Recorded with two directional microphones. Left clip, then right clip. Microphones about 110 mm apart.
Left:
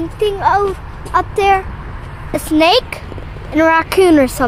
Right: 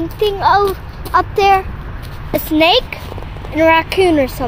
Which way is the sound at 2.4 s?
35° left (ahead or behind).